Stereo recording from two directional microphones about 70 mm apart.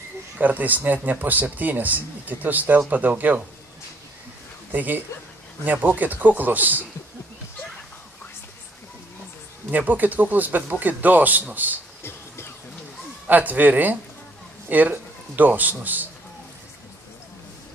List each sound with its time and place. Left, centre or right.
0.4 s speech: right
4.7 s speech: right
9.7 s speech: right
12.0 s music: left
13.3 s a man's voice: right